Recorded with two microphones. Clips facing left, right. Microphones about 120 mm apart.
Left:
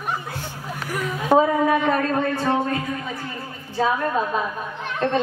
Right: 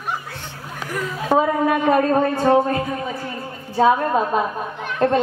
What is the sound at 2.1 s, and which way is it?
Speech, 35° right (ahead or behind).